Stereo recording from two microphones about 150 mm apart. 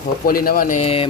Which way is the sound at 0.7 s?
40° left (ahead or behind).